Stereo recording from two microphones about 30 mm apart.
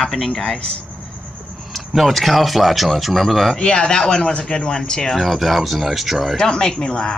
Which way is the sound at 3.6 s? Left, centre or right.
Left.